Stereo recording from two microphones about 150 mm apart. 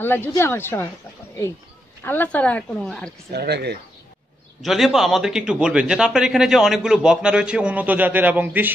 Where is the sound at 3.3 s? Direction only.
90° right.